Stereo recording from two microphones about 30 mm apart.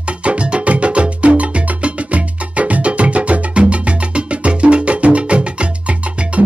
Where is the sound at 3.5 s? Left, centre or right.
Right.